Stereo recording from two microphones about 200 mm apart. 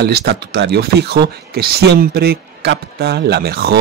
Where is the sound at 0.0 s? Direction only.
55° right (ahead or behind).